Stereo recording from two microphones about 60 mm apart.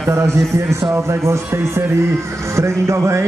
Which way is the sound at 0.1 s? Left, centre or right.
Right.